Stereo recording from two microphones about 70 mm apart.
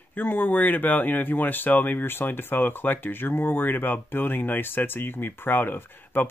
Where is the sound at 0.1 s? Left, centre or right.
Left.